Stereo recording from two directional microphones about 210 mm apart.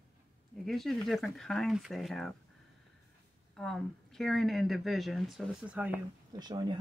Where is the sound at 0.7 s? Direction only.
Centre (ahead or behind).